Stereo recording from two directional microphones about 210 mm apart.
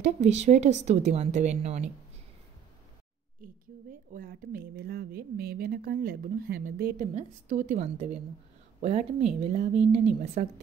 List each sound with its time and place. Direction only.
0.0 s speech: 30° right (ahead or behind)
4.1 s speech: 40° right (ahead or behind)